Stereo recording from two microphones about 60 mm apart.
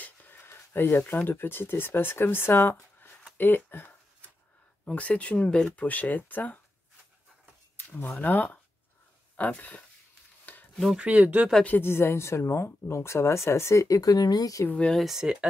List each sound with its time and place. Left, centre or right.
0.0 s a sound: left
0.4 s speech: left
4.9 s speech: left
8.2 s speech: left
10.4 s stir: left
11.0 s speech: right
11.8 s speech: left
13.8 s speech: left
14.9 s speech: centre